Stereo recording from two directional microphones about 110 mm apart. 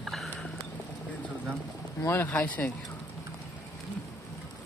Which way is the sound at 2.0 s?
20° left (ahead or behind).